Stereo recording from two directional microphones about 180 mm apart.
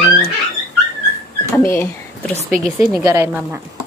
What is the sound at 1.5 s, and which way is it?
Speech, 15° left (ahead or behind).